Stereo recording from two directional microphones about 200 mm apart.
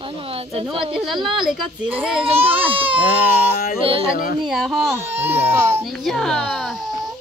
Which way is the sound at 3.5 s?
45° left (ahead or behind).